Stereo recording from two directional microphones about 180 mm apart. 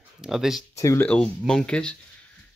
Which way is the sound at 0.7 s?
15° left (ahead or behind).